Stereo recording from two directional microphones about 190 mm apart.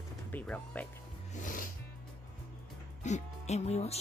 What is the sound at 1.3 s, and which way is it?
Music, 45° left (ahead or behind).